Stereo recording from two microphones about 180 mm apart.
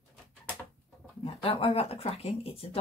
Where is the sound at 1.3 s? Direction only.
30° left (ahead or behind).